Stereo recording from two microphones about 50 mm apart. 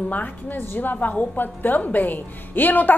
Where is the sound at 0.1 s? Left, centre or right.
Left.